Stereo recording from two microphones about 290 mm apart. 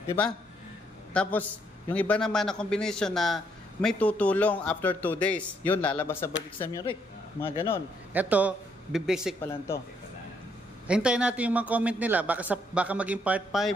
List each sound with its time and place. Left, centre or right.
1.1 s a man's voice: centre
8.1 s a man's voice: centre
10.9 s a man's voice: centre